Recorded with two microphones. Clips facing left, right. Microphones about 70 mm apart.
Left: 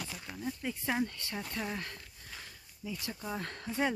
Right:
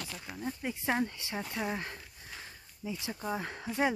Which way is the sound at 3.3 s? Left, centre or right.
Centre.